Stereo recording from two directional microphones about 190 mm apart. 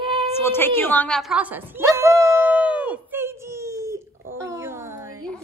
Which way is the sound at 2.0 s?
15° right (ahead or behind).